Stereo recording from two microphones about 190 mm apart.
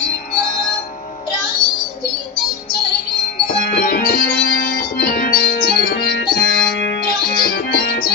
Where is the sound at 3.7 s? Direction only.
55° left (ahead or behind).